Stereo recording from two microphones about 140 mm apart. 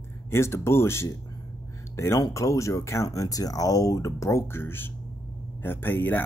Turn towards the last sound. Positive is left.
turn(degrees=15)  # may be behind; listen again after turning